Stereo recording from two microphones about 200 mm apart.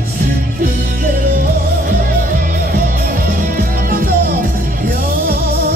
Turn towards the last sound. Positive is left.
turn(degrees=-45)  # may be behind; listen again after turning